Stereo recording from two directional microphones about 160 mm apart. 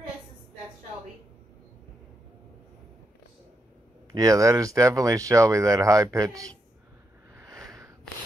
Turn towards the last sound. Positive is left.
turn(degrees=-20)  # may be behind; listen again after turning